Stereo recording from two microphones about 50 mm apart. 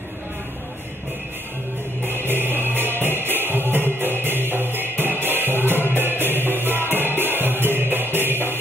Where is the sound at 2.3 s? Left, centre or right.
Right.